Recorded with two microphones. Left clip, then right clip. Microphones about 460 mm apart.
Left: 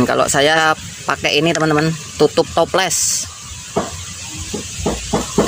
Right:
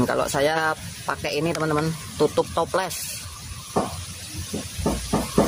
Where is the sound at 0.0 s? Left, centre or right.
Right.